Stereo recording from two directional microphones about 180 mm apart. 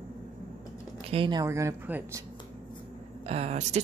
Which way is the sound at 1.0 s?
30° right (ahead or behind).